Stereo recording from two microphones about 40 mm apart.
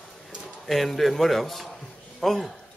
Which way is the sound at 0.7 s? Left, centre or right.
Centre.